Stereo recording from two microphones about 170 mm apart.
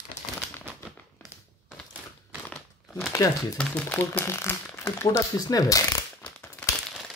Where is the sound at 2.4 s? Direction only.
10° left (ahead or behind).